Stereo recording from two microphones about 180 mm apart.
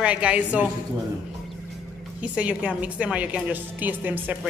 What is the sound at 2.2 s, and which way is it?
A woman's voice, 5° right (ahead or behind).